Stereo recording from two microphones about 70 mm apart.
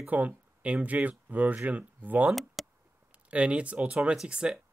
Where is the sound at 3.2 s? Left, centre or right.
Centre.